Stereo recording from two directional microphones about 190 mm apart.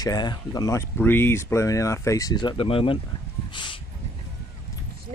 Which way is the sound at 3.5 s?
25° left (ahead or behind).